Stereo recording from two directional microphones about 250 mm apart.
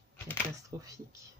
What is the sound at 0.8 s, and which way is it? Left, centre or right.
Speech, centre.